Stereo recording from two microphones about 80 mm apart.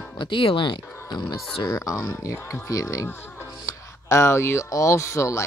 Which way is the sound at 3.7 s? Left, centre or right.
Left.